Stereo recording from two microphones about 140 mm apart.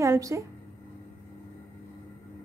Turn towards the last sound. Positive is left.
turn(degrees=-20)  # may be behind; listen again after turning